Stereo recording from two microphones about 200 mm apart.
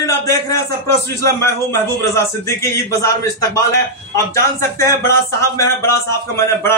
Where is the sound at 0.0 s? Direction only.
15° left (ahead or behind).